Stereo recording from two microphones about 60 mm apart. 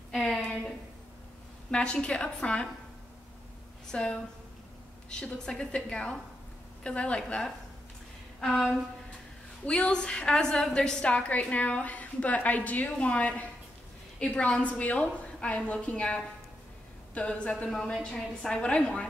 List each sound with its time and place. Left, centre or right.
0.1 s a sound: centre
1.7 s a woman's voice: centre
3.9 s a woman's voice: centre
8.4 s speech: centre
9.7 s a woman's voice: centre